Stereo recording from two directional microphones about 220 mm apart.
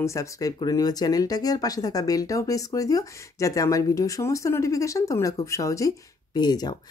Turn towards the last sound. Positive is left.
turn(degrees=20)  # may be behind; listen again after turning